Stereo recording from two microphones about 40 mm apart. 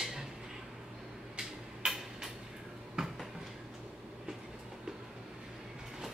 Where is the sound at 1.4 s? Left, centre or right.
Centre.